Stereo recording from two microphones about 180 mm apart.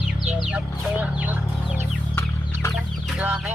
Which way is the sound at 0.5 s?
5° right (ahead or behind).